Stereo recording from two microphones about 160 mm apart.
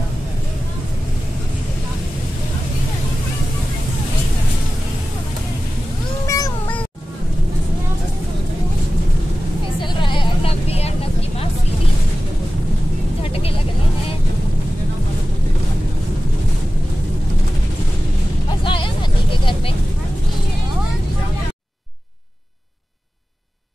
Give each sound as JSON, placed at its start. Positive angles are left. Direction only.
{"t": 6.2, "sound": "meow", "side_deg": 20}
{"t": 9.8, "sound": "vehicle", "side_deg": 30}
{"t": 13.2, "sound": "vehicle", "side_deg": 35}
{"t": 18.6, "sound": "a sound", "side_deg": 35}